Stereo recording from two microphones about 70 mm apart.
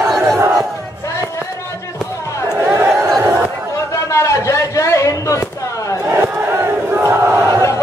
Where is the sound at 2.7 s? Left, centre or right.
Right.